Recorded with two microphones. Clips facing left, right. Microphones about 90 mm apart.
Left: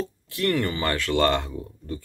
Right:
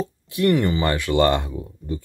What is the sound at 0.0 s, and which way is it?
Speech, 20° right (ahead or behind).